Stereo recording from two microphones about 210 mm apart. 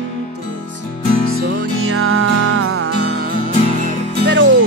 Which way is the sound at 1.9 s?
85° right.